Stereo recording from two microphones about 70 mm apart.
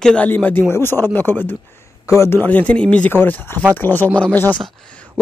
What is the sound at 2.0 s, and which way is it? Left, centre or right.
Speech, left.